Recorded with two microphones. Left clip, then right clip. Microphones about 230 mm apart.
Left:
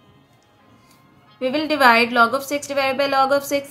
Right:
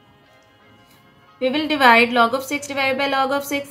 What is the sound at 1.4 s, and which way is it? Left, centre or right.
A woman's voice, centre.